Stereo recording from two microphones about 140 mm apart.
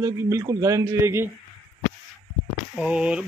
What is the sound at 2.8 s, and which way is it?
Speech, 5° right (ahead or behind).